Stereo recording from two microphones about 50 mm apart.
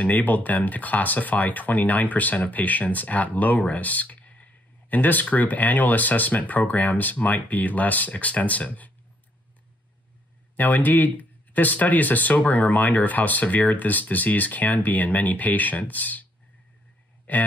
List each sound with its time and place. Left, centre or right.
0.0 s speech: left
10.5 s speech: left
17.3 s speech: left